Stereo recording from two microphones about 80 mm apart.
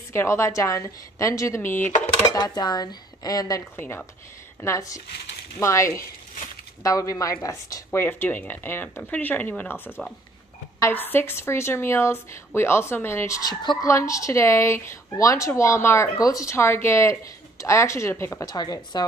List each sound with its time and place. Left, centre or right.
0.1 s speech: left
2.3 s speech: left
3.7 s speech: left
4.6 s speech: left
8.0 s speech: left
13.4 s speech: left
13.8 s speech: left
16.2 s speech: left
18.4 s speech: left